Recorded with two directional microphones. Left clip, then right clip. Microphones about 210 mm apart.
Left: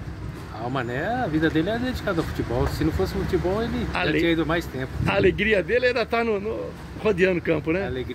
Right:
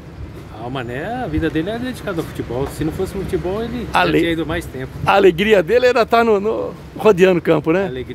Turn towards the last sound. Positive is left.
turn(degrees=-25)  # may be behind; listen again after turning